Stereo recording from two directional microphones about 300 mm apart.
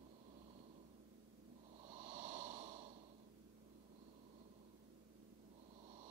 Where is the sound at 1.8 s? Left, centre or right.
Right.